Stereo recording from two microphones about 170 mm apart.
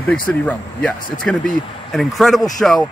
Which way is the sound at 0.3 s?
5° left (ahead or behind).